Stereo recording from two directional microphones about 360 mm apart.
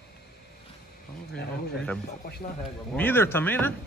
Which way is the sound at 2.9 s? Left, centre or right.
Centre.